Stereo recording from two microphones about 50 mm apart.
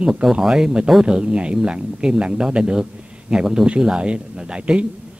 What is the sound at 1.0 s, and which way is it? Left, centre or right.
A man's voice, centre.